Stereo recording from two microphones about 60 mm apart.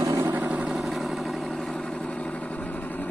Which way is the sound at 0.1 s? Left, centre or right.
Right.